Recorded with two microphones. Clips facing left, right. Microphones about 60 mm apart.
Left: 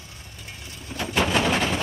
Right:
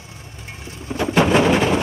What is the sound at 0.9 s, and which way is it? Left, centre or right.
Bird, right.